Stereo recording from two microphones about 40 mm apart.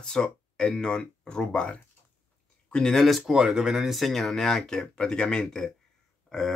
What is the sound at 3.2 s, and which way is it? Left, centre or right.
Speech, centre.